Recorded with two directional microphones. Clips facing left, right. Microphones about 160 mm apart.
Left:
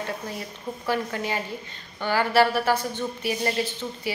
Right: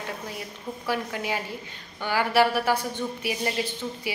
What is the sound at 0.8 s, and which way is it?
A woman's voice, 10° right (ahead or behind).